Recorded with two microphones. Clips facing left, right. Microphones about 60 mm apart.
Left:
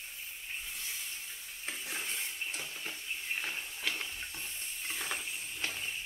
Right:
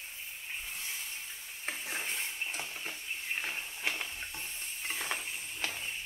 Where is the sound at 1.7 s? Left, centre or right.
Right.